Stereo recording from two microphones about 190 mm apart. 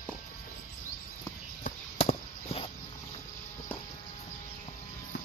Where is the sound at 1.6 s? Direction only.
35° left (ahead or behind).